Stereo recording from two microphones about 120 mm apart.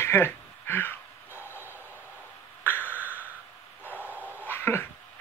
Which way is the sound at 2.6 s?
15° left (ahead or behind).